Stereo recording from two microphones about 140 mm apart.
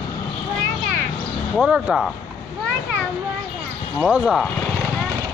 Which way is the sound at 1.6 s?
5° right (ahead or behind).